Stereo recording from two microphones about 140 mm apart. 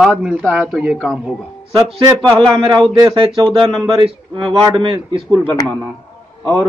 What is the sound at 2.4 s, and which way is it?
A man's voice, 35° right (ahead or behind).